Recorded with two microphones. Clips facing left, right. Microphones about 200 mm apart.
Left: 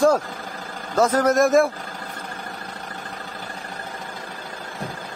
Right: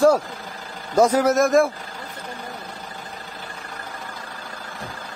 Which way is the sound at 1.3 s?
Centre (ahead or behind).